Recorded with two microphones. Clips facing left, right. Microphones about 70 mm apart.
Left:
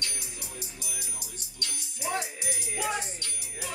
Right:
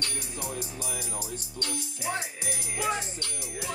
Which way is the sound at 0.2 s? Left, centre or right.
Right.